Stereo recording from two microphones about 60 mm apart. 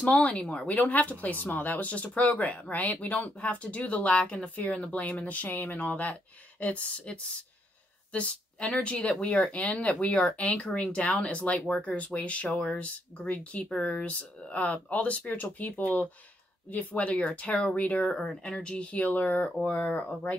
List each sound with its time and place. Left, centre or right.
0.0 s speech: centre